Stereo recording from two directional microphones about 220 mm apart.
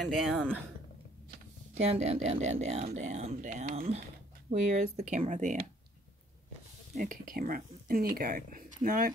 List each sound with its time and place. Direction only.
0.0 s speech: centre (ahead or behind)
1.9 s speech: 30° right (ahead or behind)
7.0 s speech: 40° right (ahead or behind)